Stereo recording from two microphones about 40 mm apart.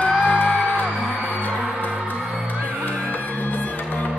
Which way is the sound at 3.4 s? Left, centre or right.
Left.